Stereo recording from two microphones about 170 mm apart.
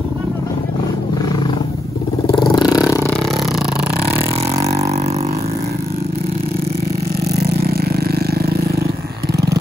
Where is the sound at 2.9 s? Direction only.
15° left (ahead or behind).